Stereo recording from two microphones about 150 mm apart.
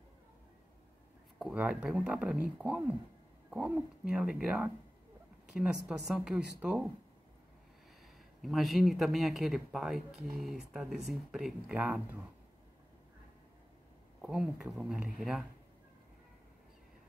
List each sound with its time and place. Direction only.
1.4 s speech: 5° right (ahead or behind)
8.4 s speech: centre (ahead or behind)
14.2 s speech: 5° right (ahead or behind)